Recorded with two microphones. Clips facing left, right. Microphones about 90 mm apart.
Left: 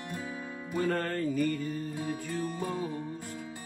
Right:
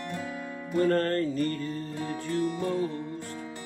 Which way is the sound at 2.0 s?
70° right (ahead or behind).